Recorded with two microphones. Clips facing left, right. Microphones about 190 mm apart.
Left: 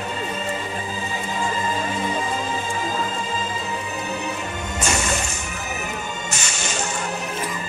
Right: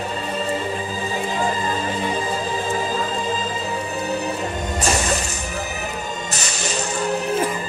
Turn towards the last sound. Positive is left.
turn(degrees=-35)  # may be behind; listen again after turning